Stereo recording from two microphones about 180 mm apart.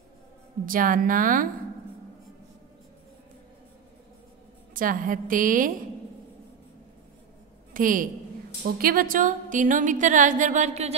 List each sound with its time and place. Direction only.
0.7 s music: 50° right (ahead or behind)
4.7 s music: 50° right (ahead or behind)
7.7 s a woman's voice: 50° right (ahead or behind)
8.7 s music: 50° right (ahead or behind)